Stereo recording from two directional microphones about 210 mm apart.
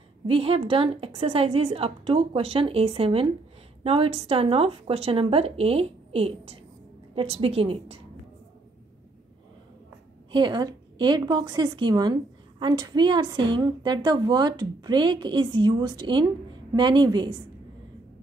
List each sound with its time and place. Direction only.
0.3 s a woman's voice: 25° right (ahead or behind)
10.3 s a woman's voice: 20° right (ahead or behind)